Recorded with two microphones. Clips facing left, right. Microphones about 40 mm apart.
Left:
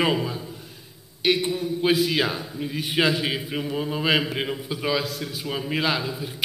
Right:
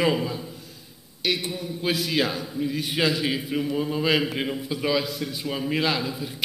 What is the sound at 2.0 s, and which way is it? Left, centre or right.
A man's voice, centre.